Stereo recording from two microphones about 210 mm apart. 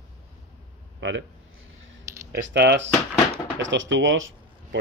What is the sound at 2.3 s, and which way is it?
Speech, 55° right (ahead or behind).